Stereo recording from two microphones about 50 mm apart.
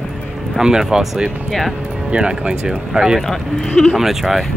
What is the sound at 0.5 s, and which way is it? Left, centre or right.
Speech, centre.